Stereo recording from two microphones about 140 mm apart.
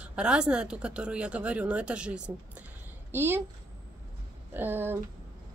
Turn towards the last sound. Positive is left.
turn(degrees=-15)  # may be behind; listen again after turning